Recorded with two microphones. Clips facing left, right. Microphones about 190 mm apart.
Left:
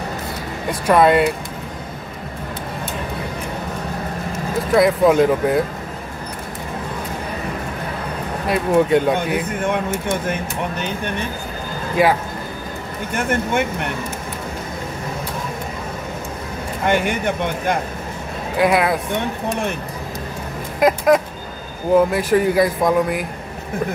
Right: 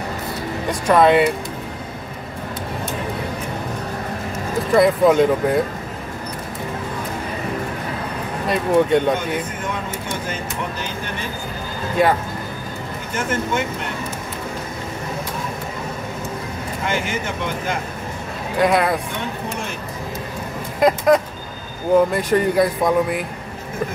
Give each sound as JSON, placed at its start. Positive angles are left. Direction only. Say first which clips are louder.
{"t": 0.8, "sound": "speech", "louder": "even", "side_deg": 5}
{"t": 4.7, "sound": "speech", "louder": "even", "side_deg": 0}
{"t": 8.5, "sound": "speech", "louder": "left 1 dB", "side_deg": 5}
{"t": 9.8, "sound": "speech", "louder": "left 5 dB", "side_deg": 60}
{"t": 13.1, "sound": "speech", "louder": "left 2 dB", "side_deg": 60}
{"t": 16.8, "sound": "speech", "louder": "left 6 dB", "side_deg": 65}
{"t": 18.6, "sound": "speech", "louder": "left 1 dB", "side_deg": 5}
{"t": 20.8, "sound": "speech", "louder": "even", "side_deg": 0}